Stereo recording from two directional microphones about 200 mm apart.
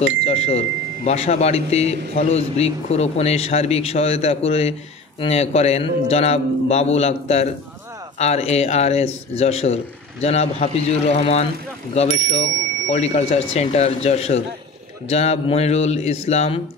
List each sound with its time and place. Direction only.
0.0 s speech: 30° left (ahead or behind)